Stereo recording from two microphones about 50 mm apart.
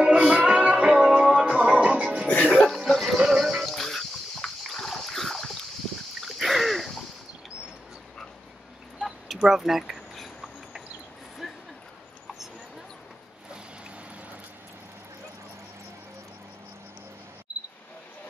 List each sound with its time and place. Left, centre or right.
0.0 s music: centre
2.2 s music: left
2.8 s a sound: centre
3.2 s music: centre
4.6 s boat: centre
6.2 s splash: centre
9.5 s a sound: centre